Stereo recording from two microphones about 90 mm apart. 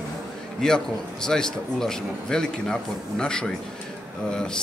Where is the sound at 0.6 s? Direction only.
5° left (ahead or behind).